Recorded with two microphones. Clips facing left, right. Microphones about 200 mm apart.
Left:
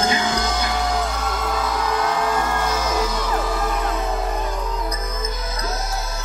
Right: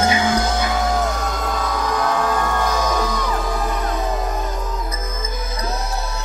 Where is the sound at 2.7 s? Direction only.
40° right (ahead or behind).